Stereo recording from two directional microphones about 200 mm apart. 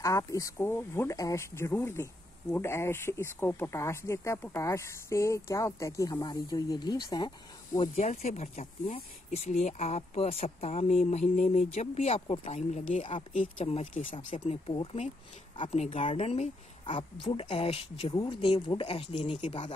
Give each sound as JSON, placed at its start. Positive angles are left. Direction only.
{"t": 0.0, "sound": "speech", "side_deg": 15}
{"t": 7.9, "sound": "speech", "side_deg": 35}